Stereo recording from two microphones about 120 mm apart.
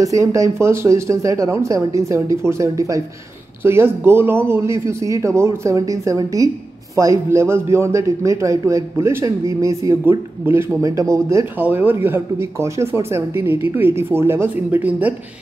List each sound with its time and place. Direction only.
0.0 s speech: 25° right (ahead or behind)